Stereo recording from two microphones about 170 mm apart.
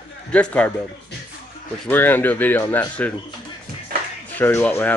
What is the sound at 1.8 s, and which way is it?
A man's voice, 10° left (ahead or behind).